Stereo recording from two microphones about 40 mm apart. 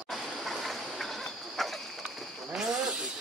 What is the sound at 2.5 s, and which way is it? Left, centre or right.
Snake, centre.